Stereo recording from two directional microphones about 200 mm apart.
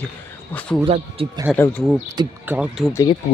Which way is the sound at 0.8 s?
30° right (ahead or behind).